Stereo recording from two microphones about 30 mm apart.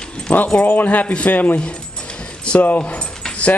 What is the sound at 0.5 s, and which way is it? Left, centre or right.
Speech, left.